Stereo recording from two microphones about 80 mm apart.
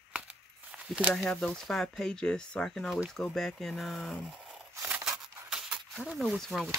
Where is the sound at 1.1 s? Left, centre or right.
Centre.